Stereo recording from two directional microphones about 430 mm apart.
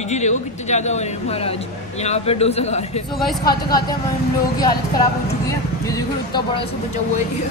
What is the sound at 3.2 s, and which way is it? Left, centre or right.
Speech, centre.